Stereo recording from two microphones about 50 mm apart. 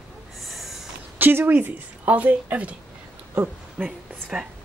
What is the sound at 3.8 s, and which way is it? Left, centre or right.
Speech, right.